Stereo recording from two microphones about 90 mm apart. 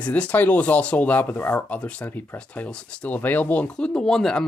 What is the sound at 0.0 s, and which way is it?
Speech, 15° left (ahead or behind).